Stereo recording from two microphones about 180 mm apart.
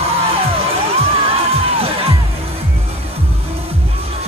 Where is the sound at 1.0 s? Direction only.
35° right (ahead or behind).